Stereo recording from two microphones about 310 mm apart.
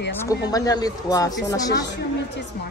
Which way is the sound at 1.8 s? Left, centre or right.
Left.